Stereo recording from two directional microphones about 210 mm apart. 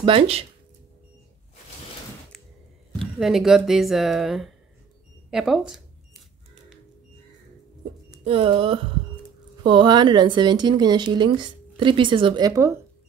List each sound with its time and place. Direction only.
0.0 s a woman's voice: 25° right (ahead or behind)
3.2 s speech: centre (ahead or behind)
5.3 s camera: centre (ahead or behind)
8.2 s a woman's voice: 25° right (ahead or behind)